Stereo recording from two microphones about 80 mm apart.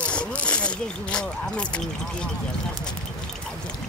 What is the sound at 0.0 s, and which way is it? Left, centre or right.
Speech, centre.